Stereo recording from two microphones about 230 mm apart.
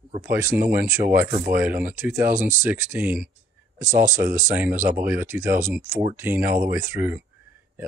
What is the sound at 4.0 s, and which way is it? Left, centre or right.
Speech, right.